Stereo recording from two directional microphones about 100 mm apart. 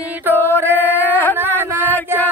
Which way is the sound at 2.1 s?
25° right (ahead or behind).